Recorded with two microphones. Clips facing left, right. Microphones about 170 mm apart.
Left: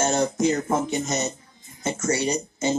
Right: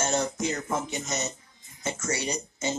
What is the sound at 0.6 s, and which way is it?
Speech, 40° left (ahead or behind).